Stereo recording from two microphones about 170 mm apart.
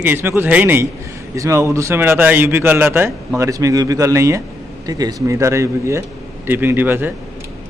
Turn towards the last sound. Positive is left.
turn(degrees=-10)  # may be behind; listen again after turning